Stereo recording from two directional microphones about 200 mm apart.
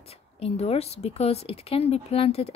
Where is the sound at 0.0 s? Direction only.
30° left (ahead or behind).